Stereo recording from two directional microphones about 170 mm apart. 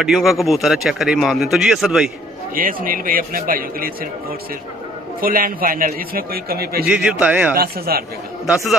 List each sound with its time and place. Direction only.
0.0 s speech: centre (ahead or behind)
2.5 s speech: 55° right (ahead or behind)
6.9 s a man's voice: 5° right (ahead or behind)
7.5 s speech: 60° right (ahead or behind)